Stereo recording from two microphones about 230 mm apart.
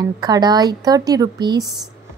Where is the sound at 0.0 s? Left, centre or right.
Centre.